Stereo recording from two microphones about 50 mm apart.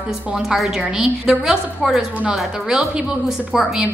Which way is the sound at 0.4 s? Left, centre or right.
Centre.